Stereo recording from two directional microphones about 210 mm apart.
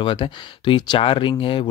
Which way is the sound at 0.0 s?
20° left (ahead or behind).